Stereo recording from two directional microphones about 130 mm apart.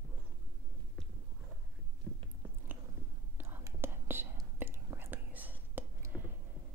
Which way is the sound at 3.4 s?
20° right (ahead or behind).